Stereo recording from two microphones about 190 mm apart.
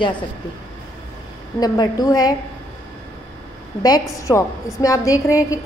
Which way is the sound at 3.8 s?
20° left (ahead or behind).